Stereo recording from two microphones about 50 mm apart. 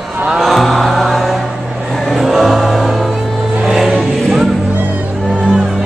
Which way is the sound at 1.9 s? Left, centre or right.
Centre.